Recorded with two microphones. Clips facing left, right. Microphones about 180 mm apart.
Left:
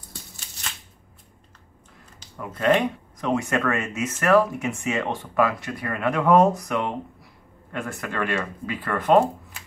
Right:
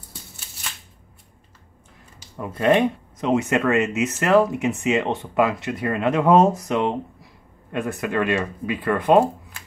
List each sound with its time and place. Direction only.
2.5 s speech: 25° right (ahead or behind)